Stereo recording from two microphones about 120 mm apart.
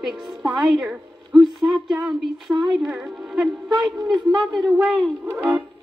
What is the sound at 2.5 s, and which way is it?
Speech, 20° right (ahead or behind).